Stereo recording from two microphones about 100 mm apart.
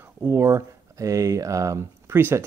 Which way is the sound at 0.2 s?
25° right (ahead or behind).